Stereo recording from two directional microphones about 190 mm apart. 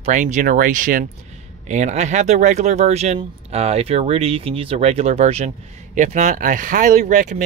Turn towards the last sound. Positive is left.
turn(degrees=-40)  # may be behind; listen again after turning